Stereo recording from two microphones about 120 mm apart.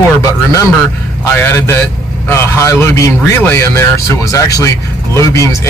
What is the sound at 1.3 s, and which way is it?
Speech, 20° left (ahead or behind).